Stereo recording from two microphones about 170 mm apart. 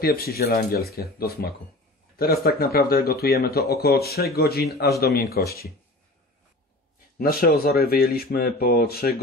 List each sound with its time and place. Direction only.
0.0 s speech: 65° left (ahead or behind)
7.2 s speech: 60° left (ahead or behind)